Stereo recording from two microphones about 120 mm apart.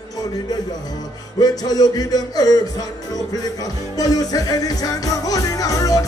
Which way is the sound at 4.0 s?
35° left (ahead or behind).